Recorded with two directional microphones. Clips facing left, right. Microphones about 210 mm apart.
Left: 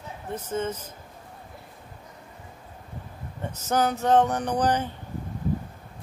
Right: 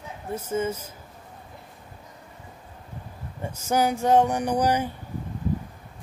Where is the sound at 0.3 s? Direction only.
10° right (ahead or behind).